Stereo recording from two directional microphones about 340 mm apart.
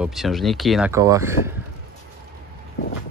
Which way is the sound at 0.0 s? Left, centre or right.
Centre.